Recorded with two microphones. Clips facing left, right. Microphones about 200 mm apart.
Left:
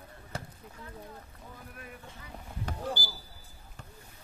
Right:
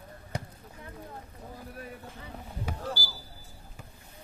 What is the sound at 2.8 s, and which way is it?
Basketball bounce, 20° left (ahead or behind).